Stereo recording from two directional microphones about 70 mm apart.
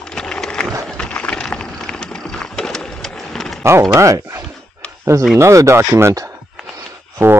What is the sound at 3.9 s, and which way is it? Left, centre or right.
Speech, right.